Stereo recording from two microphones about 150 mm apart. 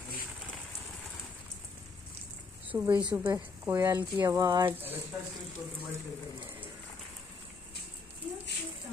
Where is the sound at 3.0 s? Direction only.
5° right (ahead or behind).